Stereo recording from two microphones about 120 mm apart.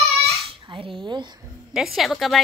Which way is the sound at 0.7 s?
45° right (ahead or behind).